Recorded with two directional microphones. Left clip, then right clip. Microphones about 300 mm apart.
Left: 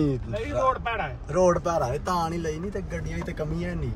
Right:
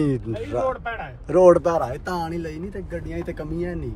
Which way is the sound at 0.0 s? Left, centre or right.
Right.